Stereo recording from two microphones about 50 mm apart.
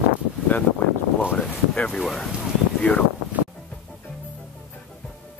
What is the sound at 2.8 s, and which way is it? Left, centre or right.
Speech, left.